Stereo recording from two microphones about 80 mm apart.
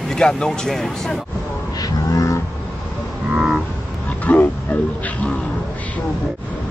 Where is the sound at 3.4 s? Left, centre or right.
Centre.